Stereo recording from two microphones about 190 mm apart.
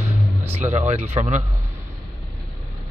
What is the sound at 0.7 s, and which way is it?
Speech, 35° right (ahead or behind).